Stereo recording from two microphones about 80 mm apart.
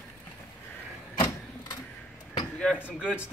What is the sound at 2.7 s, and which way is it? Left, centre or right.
Speech, centre.